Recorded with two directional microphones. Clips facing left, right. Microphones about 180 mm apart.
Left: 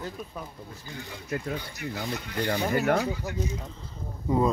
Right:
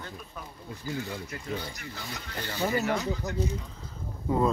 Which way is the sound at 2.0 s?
55° left (ahead or behind).